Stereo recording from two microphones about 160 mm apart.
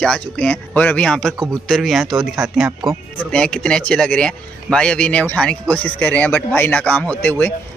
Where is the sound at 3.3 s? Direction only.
5° left (ahead or behind).